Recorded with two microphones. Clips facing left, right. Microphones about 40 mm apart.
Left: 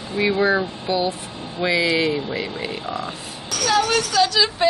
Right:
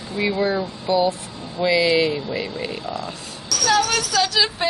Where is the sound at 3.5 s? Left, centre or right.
Left.